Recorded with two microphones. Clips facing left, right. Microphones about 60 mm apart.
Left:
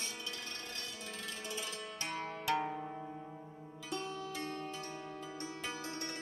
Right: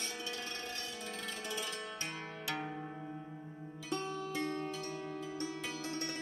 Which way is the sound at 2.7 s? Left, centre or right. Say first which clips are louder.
Left 2 dB; centre.